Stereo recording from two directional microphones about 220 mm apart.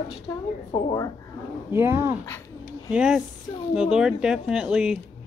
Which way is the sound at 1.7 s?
10° right (ahead or behind).